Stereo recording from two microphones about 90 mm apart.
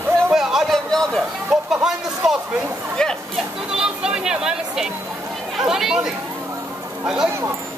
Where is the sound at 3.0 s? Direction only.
5° left (ahead or behind).